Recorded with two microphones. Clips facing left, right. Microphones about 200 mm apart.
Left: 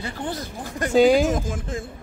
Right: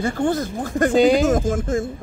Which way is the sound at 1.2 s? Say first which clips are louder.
Right 6 dB; 45° right (ahead or behind).